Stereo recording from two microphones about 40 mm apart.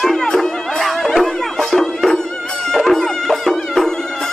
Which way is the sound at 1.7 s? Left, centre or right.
Centre.